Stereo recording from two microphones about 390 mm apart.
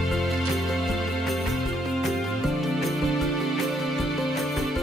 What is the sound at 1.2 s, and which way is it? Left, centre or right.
Music, centre.